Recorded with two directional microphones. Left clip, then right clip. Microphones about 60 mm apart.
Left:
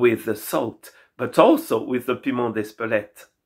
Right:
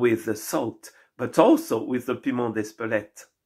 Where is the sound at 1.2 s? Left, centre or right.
Centre.